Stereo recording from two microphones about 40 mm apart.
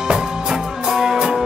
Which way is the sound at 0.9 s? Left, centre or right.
Centre.